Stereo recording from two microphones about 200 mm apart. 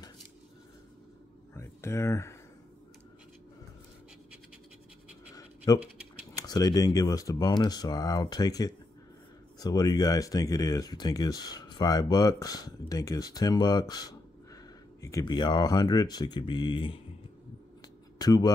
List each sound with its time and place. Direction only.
1.5 s a sound: 15° left (ahead or behind)
5.7 s speech: 20° left (ahead or behind)
18.2 s speech: 20° left (ahead or behind)